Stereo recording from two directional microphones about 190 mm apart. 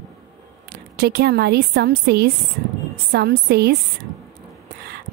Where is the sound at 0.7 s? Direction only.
55° right (ahead or behind).